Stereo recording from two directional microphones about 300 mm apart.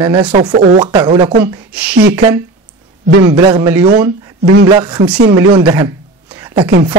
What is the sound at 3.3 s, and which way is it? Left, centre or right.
Speech, centre.